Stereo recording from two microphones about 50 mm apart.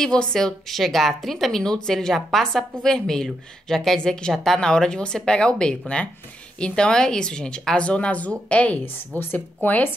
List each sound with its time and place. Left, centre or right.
0.0 s speech: centre
0.7 s a woman's voice: centre
4.3 s a woman's voice: centre
4.6 s speech: centre
9.2 s speech: left